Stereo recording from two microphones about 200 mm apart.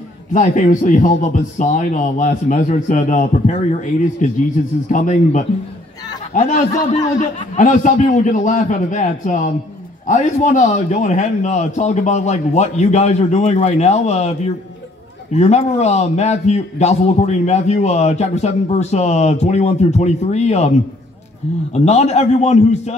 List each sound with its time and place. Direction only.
0.3 s a man's voice: 40° left (ahead or behind)
21.7 s a man's voice: 35° left (ahead or behind)